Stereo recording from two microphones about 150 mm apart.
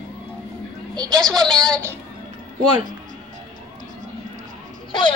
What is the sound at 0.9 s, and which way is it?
Speech, 25° right (ahead or behind).